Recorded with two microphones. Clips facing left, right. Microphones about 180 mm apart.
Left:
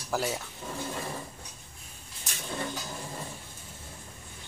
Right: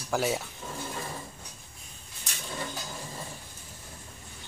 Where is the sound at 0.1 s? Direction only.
Centre (ahead or behind).